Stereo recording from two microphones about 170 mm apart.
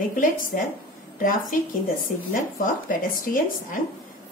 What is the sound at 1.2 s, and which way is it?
A woman's voice, 55° left (ahead or behind).